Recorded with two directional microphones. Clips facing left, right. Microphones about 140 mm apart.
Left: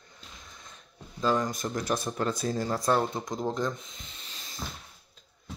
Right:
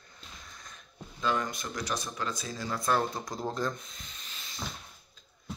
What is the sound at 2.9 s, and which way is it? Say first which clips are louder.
Speech: left 1 dB; 25° left (ahead or behind).